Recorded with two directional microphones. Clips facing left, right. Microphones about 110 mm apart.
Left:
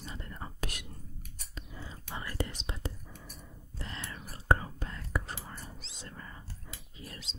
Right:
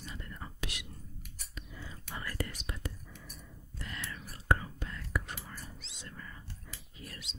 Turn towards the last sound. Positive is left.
turn(degrees=30)  # may be behind; listen again after turning